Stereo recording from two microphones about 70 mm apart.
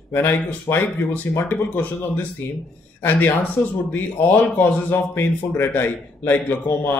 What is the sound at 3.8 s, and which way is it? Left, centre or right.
Speech, left.